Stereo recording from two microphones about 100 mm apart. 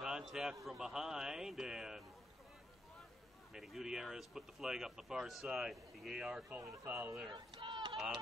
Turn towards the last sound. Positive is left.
turn(degrees=-55)  # may be behind; listen again after turning